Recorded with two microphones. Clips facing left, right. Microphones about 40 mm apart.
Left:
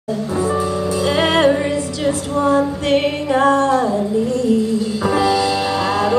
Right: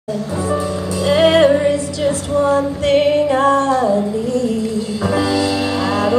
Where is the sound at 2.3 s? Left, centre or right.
Centre.